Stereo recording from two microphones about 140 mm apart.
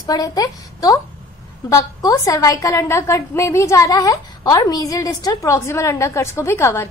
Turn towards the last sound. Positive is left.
turn(degrees=20)  # may be behind; listen again after turning